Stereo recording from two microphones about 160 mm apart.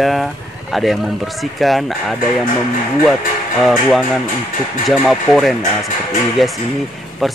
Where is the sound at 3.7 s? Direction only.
Centre (ahead or behind).